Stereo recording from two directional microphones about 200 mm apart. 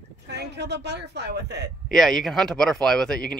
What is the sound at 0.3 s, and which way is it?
Speech, 55° right (ahead or behind).